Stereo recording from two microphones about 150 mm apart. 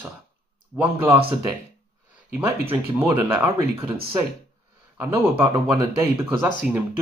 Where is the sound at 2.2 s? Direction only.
10° right (ahead or behind).